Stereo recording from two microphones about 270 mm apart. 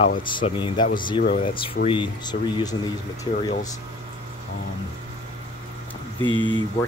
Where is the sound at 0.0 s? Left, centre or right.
Left.